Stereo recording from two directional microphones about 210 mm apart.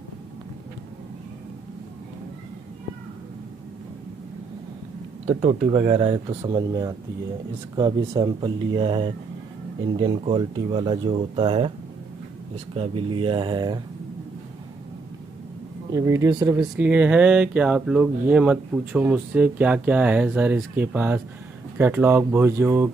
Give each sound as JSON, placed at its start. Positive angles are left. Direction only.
{"t": 5.2, "sound": "speech", "side_deg": -30}
{"t": 12.7, "sound": "speech", "side_deg": -25}
{"t": 15.9, "sound": "speech", "side_deg": -15}